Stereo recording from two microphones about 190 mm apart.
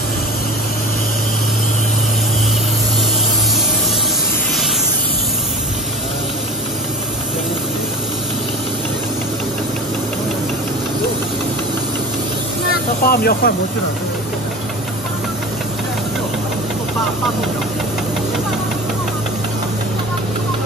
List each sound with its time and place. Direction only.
13.0 s speech: 50° left (ahead or behind)